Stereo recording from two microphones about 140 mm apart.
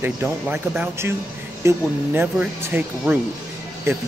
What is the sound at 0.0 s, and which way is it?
Speech, 10° right (ahead or behind).